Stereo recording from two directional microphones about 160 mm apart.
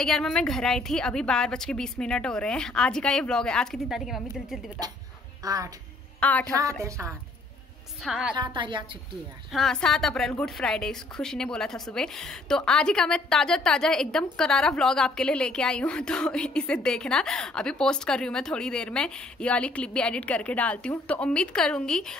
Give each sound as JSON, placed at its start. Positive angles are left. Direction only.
{"t": 0.0, "sound": "a woman's voice", "side_deg": 5}
{"t": 5.4, "sound": "a woman's voice", "side_deg": -20}
{"t": 6.1, "sound": "a woman's voice", "side_deg": 10}
{"t": 6.8, "sound": "a woman's voice", "side_deg": -20}
{"t": 8.0, "sound": "a woman's voice", "side_deg": -5}
{"t": 8.4, "sound": "a woman's voice", "side_deg": -30}
{"t": 9.5, "sound": "a woman's voice", "side_deg": 0}